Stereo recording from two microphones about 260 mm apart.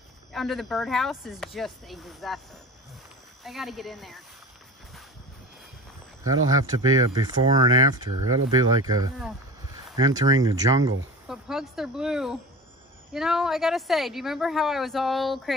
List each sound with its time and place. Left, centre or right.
0.3 s speech: centre
3.4 s speech: centre
6.6 s speech: centre
11.2 s speech: centre